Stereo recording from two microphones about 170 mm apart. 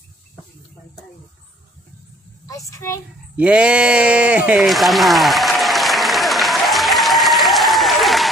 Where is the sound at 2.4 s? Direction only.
20° left (ahead or behind).